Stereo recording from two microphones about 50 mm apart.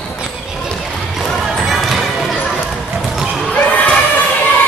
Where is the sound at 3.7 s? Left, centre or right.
Left.